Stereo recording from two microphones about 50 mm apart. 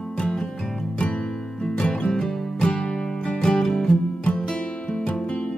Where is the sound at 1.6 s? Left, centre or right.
Centre.